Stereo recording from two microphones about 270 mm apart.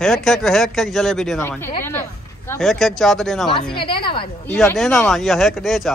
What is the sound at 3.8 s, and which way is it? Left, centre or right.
A woman's voice, centre.